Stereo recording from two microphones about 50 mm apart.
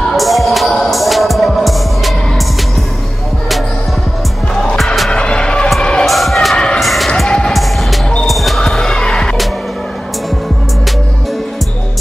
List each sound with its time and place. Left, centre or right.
0.1 s music: centre
5.1 s music: left
6.0 s crowd: centre
6.5 s a sound: centre
6.8 s music: centre
7.2 s music: centre
8.3 s basketball bounce: centre
8.6 s basketball bounce: centre